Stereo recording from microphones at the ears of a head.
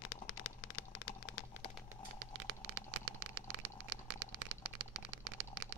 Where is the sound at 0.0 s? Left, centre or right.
Left.